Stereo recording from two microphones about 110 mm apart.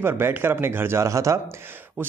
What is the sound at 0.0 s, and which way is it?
Speech, 20° right (ahead or behind).